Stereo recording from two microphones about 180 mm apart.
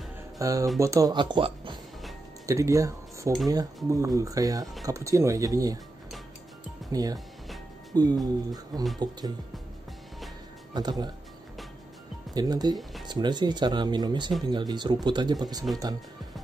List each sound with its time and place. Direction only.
0.4 s speech: 20° right (ahead or behind)
6.9 s speech: 20° right (ahead or behind)
8.7 s speech: centre (ahead or behind)
10.7 s speech: 25° right (ahead or behind)
12.4 s speech: 20° right (ahead or behind)